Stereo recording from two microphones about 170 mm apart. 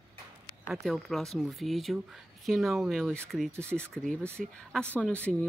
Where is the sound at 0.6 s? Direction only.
5° right (ahead or behind).